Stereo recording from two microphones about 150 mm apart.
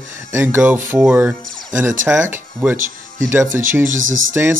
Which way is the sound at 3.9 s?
60° right (ahead or behind).